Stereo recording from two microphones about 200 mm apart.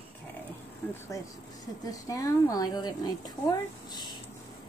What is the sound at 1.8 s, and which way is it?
A woman's voice, 15° left (ahead or behind).